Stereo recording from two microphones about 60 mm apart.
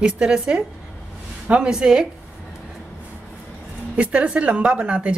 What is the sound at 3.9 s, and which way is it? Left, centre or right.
Speech, centre.